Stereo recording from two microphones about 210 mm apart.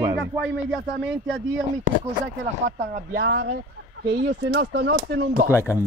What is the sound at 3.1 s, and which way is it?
Speech, 55° right (ahead or behind).